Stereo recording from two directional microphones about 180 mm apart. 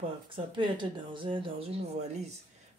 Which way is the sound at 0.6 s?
25° right (ahead or behind).